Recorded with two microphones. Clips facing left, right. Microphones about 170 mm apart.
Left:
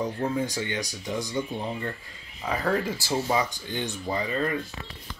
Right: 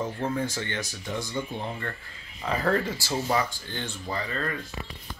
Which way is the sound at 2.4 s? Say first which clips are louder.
Right 1 dB; 5° left (ahead or behind).